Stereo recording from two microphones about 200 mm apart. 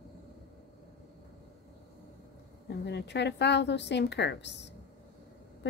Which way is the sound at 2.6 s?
60° left (ahead or behind).